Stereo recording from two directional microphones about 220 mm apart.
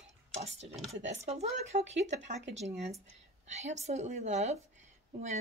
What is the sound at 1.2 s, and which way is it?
Speech, 30° right (ahead or behind).